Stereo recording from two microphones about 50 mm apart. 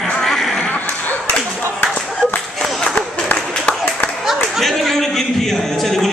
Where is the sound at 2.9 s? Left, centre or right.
Left.